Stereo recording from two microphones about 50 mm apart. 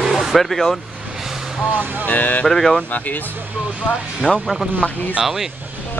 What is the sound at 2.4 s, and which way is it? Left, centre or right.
Speech, centre.